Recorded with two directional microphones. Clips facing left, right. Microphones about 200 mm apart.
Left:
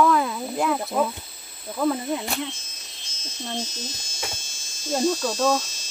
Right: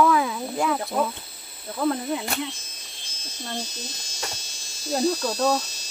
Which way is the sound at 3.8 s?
35° right (ahead or behind).